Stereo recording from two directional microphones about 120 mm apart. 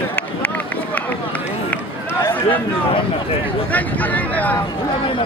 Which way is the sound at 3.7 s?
15° left (ahead or behind).